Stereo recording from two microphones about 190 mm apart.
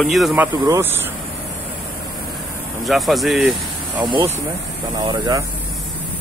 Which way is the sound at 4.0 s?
25° right (ahead or behind).